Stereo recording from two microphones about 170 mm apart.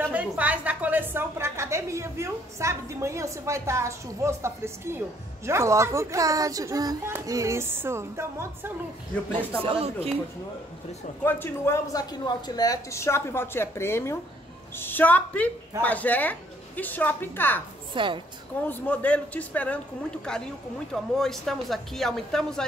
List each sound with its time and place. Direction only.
0.0 s a woman's voice: 10° right (ahead or behind)
9.6 s speech: 35° right (ahead or behind)
11.2 s speech: 10° left (ahead or behind)
17.9 s a woman's voice: 30° right (ahead or behind)
18.7 s speech: 10° left (ahead or behind)
20.9 s a woman's voice: centre (ahead or behind)